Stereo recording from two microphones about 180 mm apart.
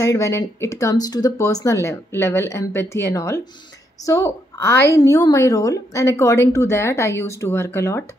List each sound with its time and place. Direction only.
0.0 s a woman's voice: 15° left (ahead or behind)